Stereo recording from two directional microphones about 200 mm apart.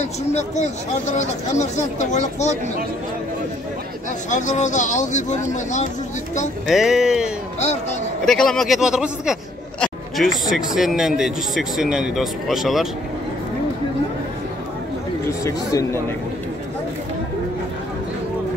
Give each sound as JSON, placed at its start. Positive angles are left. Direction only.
{"t": 0.0, "sound": "speech", "side_deg": 35}
{"t": 4.3, "sound": "speech", "side_deg": 35}
{"t": 6.7, "sound": "a man's voice", "side_deg": 0}
{"t": 8.3, "sound": "a man's voice", "side_deg": 0}
{"t": 15.4, "sound": "speech", "side_deg": 15}